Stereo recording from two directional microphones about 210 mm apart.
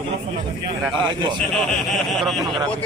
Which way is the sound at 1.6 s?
Centre (ahead or behind).